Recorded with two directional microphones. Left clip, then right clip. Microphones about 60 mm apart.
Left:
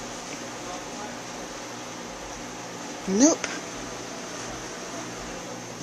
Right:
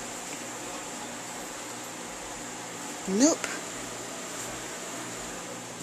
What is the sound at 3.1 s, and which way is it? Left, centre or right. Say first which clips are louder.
Speech: left 3 dB; centre.